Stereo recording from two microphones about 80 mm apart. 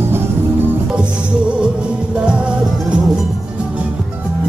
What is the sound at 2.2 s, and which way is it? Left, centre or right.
Music, centre.